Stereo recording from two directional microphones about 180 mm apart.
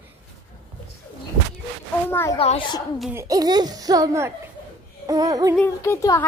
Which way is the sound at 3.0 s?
10° right (ahead or behind).